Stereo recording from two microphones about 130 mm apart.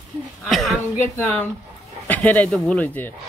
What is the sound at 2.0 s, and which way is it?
Speech, 15° left (ahead or behind).